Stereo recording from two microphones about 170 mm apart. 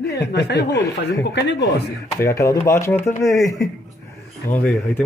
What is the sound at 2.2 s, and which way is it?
Speech, 15° left (ahead or behind).